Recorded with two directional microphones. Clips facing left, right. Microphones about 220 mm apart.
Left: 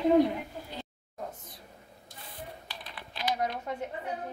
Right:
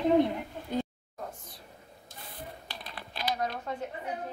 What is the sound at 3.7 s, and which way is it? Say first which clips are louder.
Speech: even; 15° left (ahead or behind).